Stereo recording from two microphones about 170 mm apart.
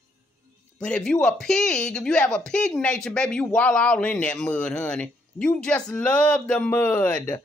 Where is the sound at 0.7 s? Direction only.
5° left (ahead or behind).